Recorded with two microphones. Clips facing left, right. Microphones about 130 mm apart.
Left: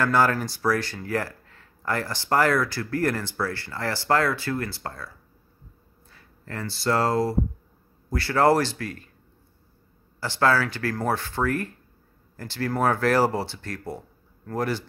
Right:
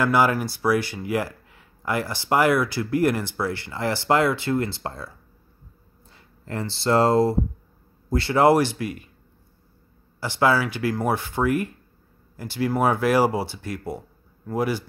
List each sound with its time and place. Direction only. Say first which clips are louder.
0.0 s speech: right 2 dB; 10° right (ahead or behind)
10.2 s speech: right 1 dB; 15° right (ahead or behind)